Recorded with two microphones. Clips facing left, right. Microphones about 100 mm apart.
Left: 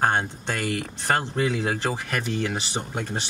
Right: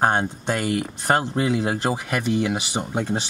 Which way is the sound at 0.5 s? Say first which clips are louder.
Right 4 dB; 20° right (ahead or behind).